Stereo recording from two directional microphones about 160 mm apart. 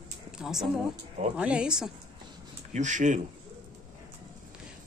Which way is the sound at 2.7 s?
50° right (ahead or behind).